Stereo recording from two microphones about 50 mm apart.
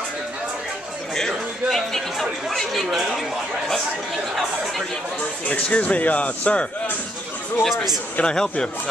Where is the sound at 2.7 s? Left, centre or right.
Centre.